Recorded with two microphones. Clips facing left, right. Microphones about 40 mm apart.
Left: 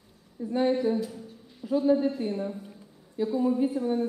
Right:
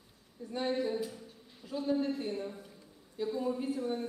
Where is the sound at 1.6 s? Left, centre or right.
Left.